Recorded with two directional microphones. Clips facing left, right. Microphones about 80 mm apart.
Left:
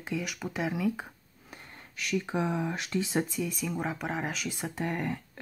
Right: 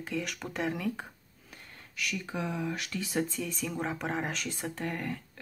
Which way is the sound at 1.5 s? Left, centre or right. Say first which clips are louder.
Even; left.